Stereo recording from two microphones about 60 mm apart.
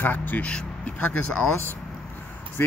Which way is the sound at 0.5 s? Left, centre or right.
Left.